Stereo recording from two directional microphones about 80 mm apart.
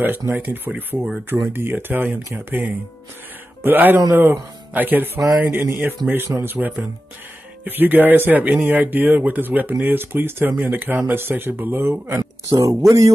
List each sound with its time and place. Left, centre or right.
0.3 s speech: right
12.4 s speech: right